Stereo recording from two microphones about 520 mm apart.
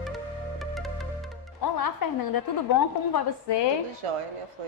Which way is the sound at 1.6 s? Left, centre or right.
Left.